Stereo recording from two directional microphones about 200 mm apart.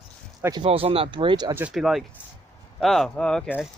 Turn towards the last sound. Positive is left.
turn(degrees=5)  # may be behind; listen again after turning